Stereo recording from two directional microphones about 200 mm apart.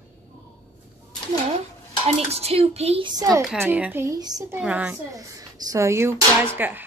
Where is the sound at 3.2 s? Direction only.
15° right (ahead or behind).